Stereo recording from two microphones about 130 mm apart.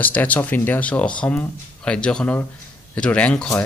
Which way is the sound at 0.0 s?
10° left (ahead or behind).